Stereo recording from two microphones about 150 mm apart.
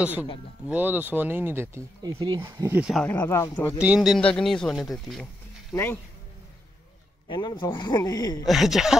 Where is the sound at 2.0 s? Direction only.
25° right (ahead or behind).